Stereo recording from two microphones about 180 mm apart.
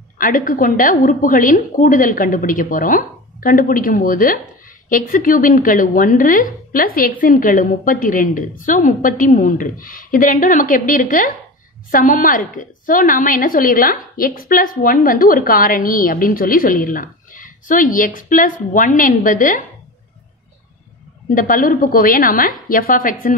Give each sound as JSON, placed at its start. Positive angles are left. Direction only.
{"t": 0.2, "sound": "a woman's voice", "side_deg": 50}
{"t": 21.4, "sound": "a woman's voice", "side_deg": 50}